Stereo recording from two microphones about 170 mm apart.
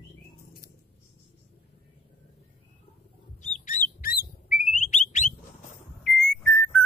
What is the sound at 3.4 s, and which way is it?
Bird, 50° left (ahead or behind).